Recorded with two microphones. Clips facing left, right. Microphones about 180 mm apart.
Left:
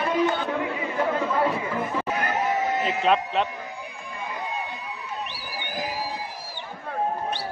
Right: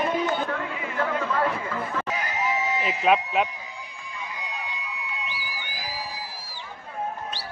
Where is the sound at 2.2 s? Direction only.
55° left (ahead or behind).